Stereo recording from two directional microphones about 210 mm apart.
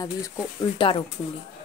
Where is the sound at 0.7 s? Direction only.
25° left (ahead or behind).